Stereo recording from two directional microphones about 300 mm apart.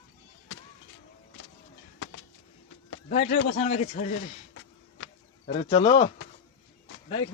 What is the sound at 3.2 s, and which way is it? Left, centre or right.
Speech, left.